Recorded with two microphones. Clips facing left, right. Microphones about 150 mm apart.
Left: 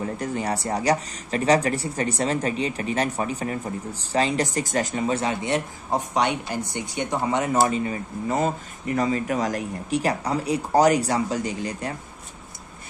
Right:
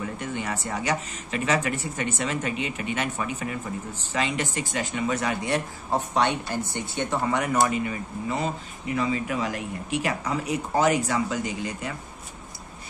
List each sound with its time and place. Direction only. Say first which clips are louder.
0.0 s speech: left 4 dB; 35° left (ahead or behind); by 7.5 s 20° left (ahead or behind)
7.6 s speech: left 2 dB; 30° left (ahead or behind)